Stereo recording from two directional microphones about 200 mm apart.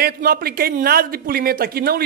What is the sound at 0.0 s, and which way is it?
A man's voice, 50° right (ahead or behind).